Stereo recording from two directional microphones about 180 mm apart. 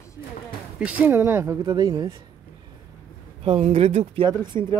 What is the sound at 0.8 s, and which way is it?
Speech, 5° right (ahead or behind).